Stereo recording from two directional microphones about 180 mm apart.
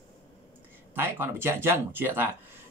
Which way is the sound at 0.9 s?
10° right (ahead or behind).